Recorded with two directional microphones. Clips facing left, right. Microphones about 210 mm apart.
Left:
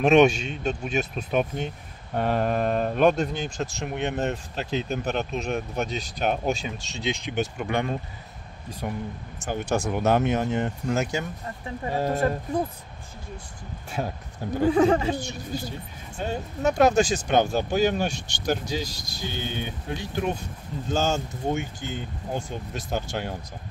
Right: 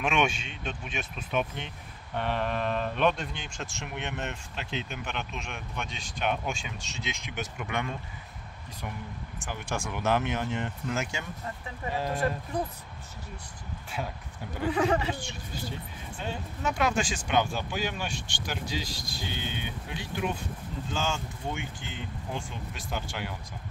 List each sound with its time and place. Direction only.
0.0 s speech: 40° left (ahead or behind)
14.0 s speech: 50° left (ahead or behind)
14.6 s speech: 40° left (ahead or behind)